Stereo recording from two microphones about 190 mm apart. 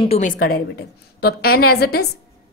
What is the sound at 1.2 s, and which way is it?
Speech, 55° left (ahead or behind).